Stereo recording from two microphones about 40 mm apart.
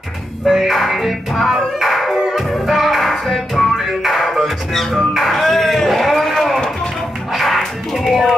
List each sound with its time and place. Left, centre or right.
0.5 s music: centre
3.7 s music: centre
5.1 s a sound: centre
7.3 s music: centre